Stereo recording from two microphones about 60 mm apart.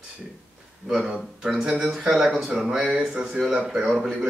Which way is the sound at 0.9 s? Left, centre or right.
Centre.